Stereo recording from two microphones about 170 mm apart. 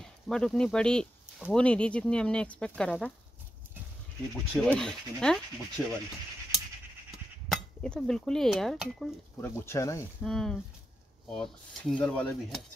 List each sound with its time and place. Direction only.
0.0 s speech: 5° left (ahead or behind)
4.6 s speech: 5° left (ahead or behind)
7.1 s speech: centre (ahead or behind)
9.4 s speech: 15° left (ahead or behind)
10.2 s speech: centre (ahead or behind)